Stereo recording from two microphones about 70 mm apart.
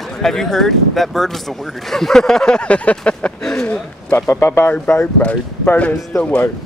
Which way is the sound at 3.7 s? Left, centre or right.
Left.